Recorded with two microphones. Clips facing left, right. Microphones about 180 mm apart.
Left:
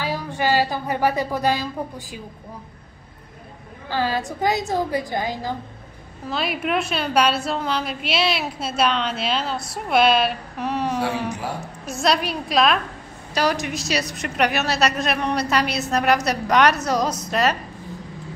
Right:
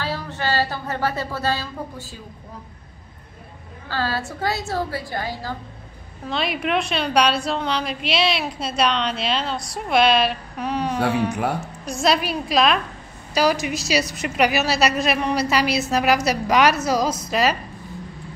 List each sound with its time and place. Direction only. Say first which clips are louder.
0.0 s a woman's voice: left 3 dB; 15° left (ahead or behind)
3.9 s a woman's voice: left 2 dB; 15° left (ahead or behind)
6.2 s a woman's voice: right 1 dB; 5° left (ahead or behind)